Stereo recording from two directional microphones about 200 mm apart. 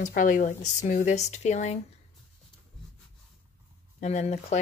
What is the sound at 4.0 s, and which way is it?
Speech, 35° left (ahead or behind).